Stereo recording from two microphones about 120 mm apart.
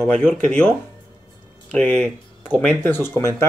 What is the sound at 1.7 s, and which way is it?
Speech, 10° left (ahead or behind).